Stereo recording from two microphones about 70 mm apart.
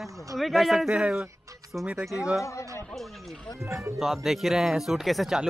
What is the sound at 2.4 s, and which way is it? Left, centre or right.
Speech, left.